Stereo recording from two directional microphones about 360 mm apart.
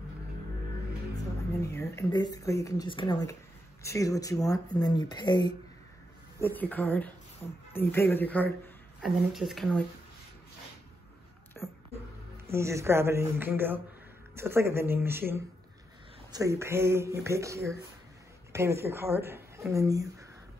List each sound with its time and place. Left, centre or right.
1.7 s speech: centre
11.6 s a sound: centre
12.4 s speech: centre